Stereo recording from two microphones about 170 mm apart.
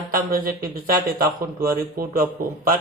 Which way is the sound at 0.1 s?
55° right (ahead or behind).